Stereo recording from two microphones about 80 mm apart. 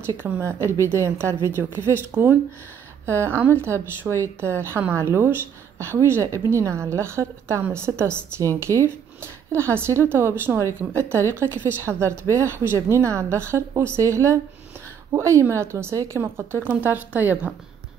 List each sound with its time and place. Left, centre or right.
0.2 s speech: right
3.1 s speech: right
16.6 s a woman's voice: right